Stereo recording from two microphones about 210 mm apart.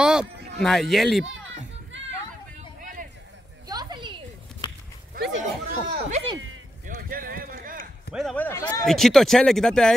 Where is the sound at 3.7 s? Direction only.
20° right (ahead or behind).